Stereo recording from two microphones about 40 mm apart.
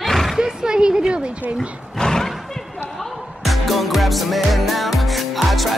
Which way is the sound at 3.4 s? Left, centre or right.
Centre.